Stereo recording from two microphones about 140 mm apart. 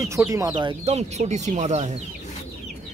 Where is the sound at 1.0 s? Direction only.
55° right (ahead or behind).